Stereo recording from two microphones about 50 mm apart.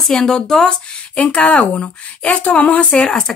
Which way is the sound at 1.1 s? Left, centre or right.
Left.